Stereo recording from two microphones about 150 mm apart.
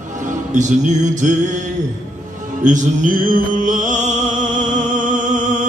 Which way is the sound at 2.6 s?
60° right (ahead or behind).